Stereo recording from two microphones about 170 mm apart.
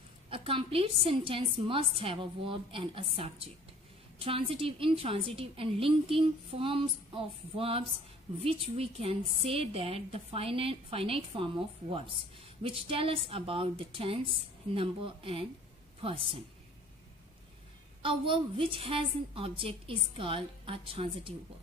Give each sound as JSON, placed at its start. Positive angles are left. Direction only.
{"t": 0.3, "sound": "a woman's voice", "side_deg": -30}
{"t": 18.0, "sound": "a woman's voice", "side_deg": -30}